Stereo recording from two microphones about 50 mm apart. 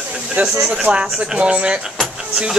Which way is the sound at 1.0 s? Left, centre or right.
Centre.